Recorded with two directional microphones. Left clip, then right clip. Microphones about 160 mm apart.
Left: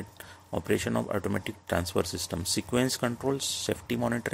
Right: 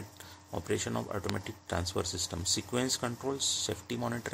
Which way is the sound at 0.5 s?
40° left (ahead or behind).